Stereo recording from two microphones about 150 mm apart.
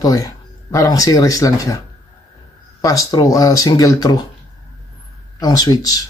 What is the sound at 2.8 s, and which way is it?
Speech, 25° left (ahead or behind).